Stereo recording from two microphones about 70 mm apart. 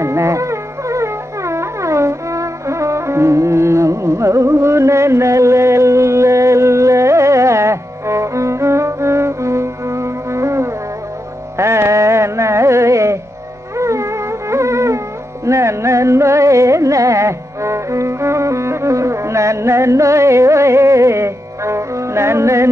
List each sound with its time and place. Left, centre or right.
0.0 s music: right
13.7 s dog: right
15.4 s music: right